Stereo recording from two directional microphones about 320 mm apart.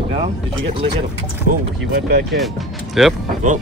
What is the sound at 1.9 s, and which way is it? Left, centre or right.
Speech, right.